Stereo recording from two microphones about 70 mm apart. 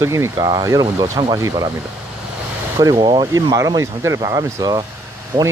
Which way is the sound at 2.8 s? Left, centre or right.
Right.